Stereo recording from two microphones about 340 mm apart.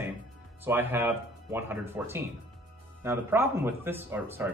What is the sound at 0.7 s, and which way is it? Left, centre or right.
Speech, centre.